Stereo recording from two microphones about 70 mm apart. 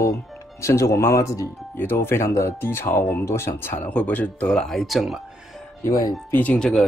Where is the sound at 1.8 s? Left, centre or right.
Left.